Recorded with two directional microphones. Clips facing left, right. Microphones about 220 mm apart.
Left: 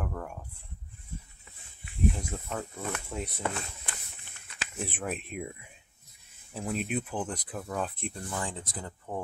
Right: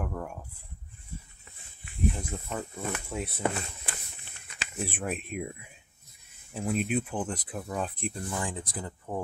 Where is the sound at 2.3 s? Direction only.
Centre (ahead or behind).